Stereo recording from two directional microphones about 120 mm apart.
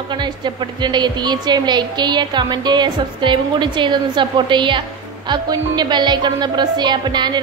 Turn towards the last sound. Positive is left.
turn(degrees=-35)  # may be behind; listen again after turning